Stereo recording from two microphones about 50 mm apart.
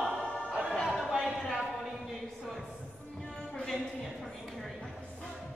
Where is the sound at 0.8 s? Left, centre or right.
Centre.